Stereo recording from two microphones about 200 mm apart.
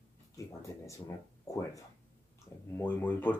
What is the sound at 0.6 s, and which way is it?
Speech, 15° left (ahead or behind).